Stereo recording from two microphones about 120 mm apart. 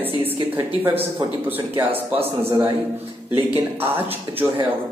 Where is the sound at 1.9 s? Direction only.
50° right (ahead or behind).